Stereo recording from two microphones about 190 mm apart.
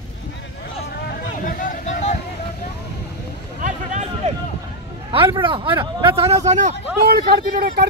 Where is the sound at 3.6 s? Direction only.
40° right (ahead or behind).